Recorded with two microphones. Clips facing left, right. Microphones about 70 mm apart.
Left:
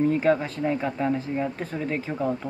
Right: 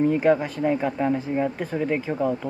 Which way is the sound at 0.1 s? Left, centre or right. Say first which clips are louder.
Right 2 dB; centre.